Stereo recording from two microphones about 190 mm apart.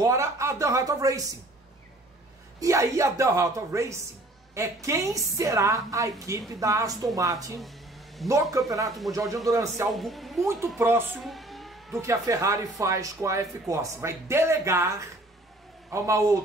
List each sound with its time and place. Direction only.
0.0 s speech: 15° right (ahead or behind)
2.6 s speech: 15° right (ahead or behind)
7.6 s a sound: centre (ahead or behind)
8.3 s speech: 15° right (ahead or behind)
8.8 s a woman's voice: centre (ahead or behind)
9.1 s speech: 15° right (ahead or behind)
9.8 s a woman's voice: centre (ahead or behind)
10.4 s speech: 15° right (ahead or behind)
11.2 s siren: centre (ahead or behind)
12.0 s speech: 15° right (ahead or behind)